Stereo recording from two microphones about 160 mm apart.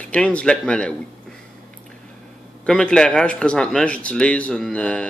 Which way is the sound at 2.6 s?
5° left (ahead or behind).